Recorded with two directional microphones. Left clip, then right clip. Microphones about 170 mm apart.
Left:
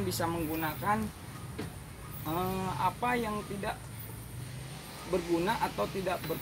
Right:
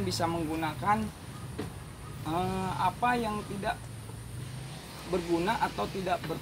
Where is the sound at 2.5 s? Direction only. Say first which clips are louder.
Right 2 dB; 15° right (ahead or behind).